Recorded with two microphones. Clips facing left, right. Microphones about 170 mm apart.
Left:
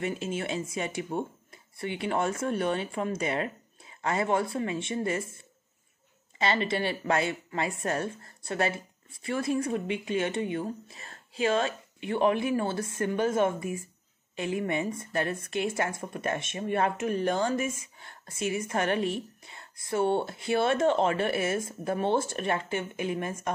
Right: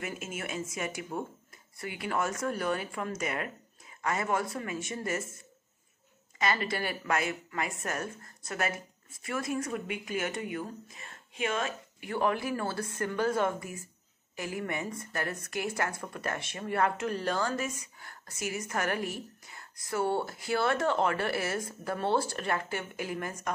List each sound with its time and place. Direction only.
0.0 s a woman's voice: 30° left (ahead or behind)
6.3 s a woman's voice: 25° left (ahead or behind)